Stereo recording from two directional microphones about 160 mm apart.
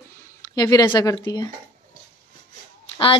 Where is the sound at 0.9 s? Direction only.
30° left (ahead or behind).